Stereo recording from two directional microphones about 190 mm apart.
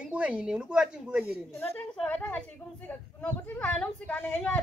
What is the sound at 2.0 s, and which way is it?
Speech, 10° left (ahead or behind).